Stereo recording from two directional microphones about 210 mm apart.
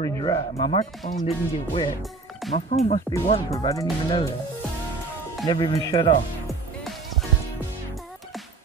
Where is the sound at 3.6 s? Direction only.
20° left (ahead or behind).